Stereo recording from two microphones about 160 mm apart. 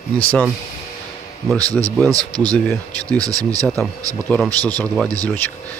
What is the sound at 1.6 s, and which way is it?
Speech, 20° right (ahead or behind).